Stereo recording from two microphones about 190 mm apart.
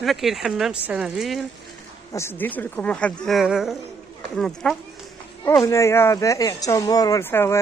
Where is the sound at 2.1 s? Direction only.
15° left (ahead or behind).